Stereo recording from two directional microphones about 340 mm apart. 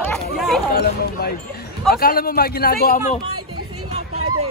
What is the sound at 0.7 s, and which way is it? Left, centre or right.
A man's voice, left.